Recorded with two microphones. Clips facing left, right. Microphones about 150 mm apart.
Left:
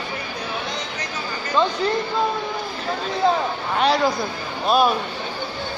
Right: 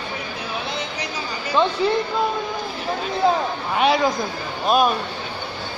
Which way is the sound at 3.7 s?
5° right (ahead or behind).